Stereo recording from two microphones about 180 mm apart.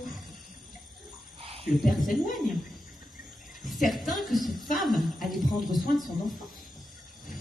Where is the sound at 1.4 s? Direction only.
35° right (ahead or behind).